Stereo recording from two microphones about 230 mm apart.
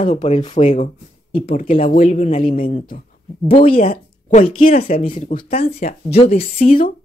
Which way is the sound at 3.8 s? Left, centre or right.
Left.